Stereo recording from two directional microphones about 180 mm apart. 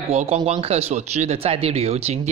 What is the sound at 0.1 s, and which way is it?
Speech, 40° right (ahead or behind).